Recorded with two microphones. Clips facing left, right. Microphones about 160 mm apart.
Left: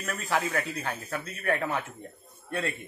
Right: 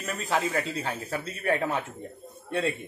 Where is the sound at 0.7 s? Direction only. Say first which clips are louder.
Right 2 dB; 25° right (ahead or behind).